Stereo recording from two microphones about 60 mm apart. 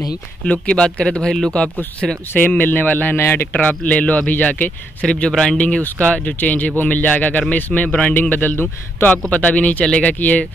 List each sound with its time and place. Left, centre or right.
0.4 s speech: centre
2.0 s speech: centre
2.3 s a man's voice: left
3.2 s a man's voice: left
3.5 s a man's voice: left
5.0 s speech: centre
5.6 s a man's voice: left